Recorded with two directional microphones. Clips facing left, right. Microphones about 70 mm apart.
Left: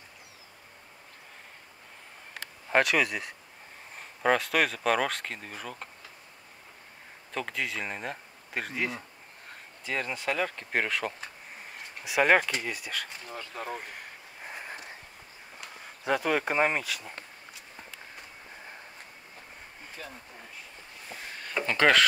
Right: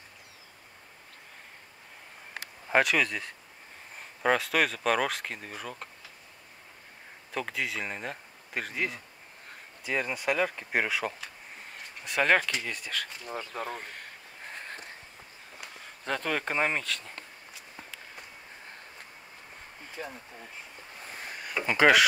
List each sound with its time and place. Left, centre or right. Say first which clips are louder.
2.7 s speech: even; centre
7.3 s speech: even; centre
12.0 s speech: left 2 dB; centre
13.5 s a sound: right 1 dB; centre
15.7 s speech: left 5 dB; centre
20.0 s speech: right 5 dB; right
21.6 s speech: right 2 dB; centre